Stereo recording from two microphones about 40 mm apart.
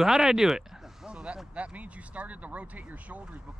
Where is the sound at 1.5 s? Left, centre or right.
Right.